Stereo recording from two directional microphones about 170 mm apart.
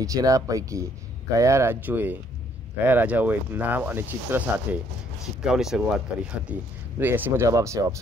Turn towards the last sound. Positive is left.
turn(degrees=-20)  # may be behind; listen again after turning